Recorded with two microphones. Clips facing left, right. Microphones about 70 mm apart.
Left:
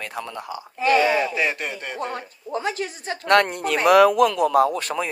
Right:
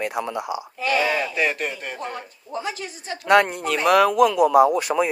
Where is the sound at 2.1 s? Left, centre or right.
Left.